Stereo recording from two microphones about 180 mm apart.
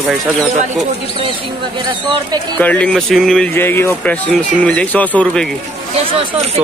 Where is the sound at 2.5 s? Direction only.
5° left (ahead or behind).